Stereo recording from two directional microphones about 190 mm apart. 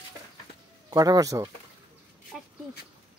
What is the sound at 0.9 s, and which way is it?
Speech, 20° right (ahead or behind).